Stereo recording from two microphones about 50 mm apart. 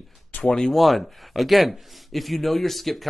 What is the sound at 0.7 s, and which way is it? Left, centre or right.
Speech, centre.